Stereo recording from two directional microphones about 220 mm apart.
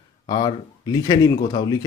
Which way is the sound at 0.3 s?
20° left (ahead or behind).